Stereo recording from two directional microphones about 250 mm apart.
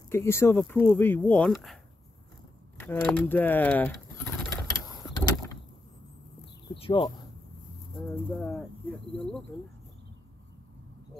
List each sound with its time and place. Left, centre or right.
0.1 s speech: centre
2.8 s speech: centre
6.7 s speech: centre
8.0 s speech: centre